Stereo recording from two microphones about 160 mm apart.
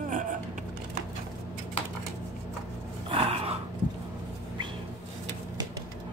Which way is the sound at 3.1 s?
35° right (ahead or behind).